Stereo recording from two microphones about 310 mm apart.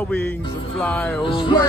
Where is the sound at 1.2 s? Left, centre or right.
Centre.